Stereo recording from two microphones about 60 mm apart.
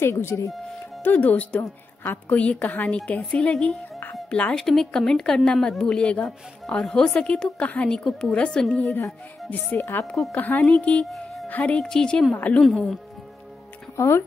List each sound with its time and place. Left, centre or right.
0.0 s speech: left
0.5 s speech: centre
1.0 s a woman's voice: left
4.6 s speech: centre
6.6 s speech: centre
9.5 s a woman's voice: left
11.1 s music: centre
11.4 s speech: left; by 13.0 s centre
13.9 s speech: left